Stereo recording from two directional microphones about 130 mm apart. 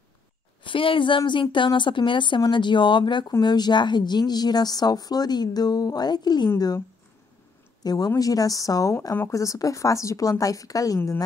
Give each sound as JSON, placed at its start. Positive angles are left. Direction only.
{"t": 0.7, "sound": "a woman's voice", "side_deg": 40}
{"t": 7.8, "sound": "a woman's voice", "side_deg": 30}